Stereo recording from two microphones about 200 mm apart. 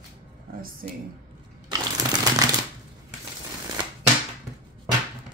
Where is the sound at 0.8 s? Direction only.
45° right (ahead or behind).